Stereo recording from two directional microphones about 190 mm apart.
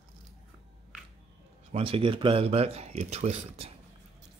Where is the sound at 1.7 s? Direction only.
30° right (ahead or behind).